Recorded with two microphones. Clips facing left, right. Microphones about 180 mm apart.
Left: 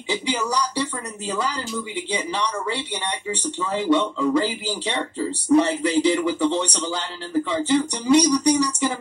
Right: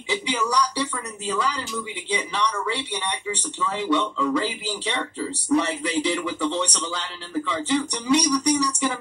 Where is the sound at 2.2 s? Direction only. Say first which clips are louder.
Even; 40° left (ahead or behind).